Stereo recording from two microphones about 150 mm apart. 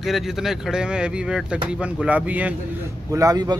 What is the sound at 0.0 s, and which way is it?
Speech, centre (ahead or behind).